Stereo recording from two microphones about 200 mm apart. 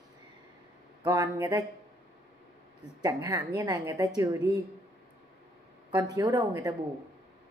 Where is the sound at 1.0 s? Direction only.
20° right (ahead or behind).